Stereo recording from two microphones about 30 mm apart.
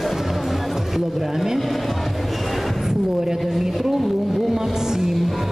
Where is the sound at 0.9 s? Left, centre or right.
Centre.